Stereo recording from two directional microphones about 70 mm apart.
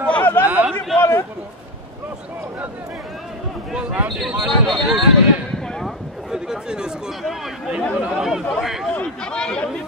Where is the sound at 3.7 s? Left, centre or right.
Centre.